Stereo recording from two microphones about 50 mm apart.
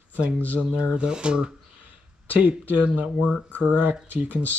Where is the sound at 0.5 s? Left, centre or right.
Right.